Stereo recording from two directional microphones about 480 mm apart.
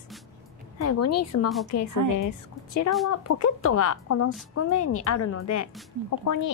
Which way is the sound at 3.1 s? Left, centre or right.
Left.